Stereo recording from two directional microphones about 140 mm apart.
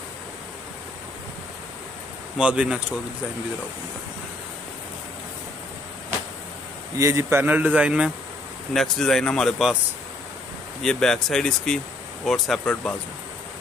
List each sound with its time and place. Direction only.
2.3 s a man's voice: 5° right (ahead or behind)
7.0 s a man's voice: 20° right (ahead or behind)
8.7 s speech: 5° left (ahead or behind)
10.8 s speech: 5° left (ahead or behind)